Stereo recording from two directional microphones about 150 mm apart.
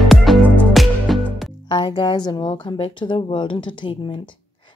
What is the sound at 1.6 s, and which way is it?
Speech, 30° left (ahead or behind).